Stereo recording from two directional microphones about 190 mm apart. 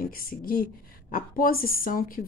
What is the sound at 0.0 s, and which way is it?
A woman's voice, 50° left (ahead or behind).